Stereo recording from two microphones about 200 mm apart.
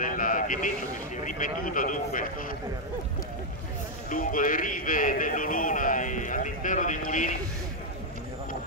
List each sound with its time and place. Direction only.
0.0 s a man's voice: 45° left (ahead or behind)
4.1 s a man's voice: 40° left (ahead or behind)